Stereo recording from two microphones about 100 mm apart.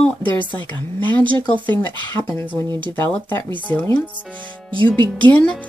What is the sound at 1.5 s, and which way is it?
Speech, 20° left (ahead or behind).